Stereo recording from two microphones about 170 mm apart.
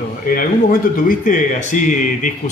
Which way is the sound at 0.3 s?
55° left (ahead or behind).